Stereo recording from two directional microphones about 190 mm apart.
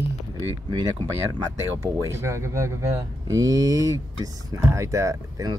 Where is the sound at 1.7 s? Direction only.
15° right (ahead or behind).